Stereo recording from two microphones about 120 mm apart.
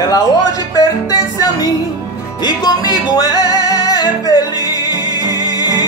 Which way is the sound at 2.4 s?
35° left (ahead or behind).